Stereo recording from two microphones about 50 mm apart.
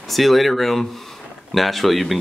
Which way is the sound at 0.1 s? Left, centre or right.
Centre.